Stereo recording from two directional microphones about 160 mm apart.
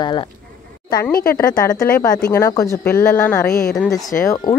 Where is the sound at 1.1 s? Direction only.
70° left (ahead or behind).